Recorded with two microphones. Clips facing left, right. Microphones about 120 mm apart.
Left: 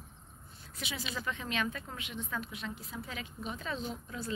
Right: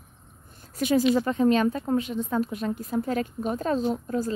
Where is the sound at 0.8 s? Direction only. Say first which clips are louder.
Right 19 dB; 45° right (ahead or behind).